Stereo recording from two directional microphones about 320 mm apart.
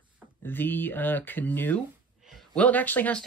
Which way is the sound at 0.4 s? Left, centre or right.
Centre.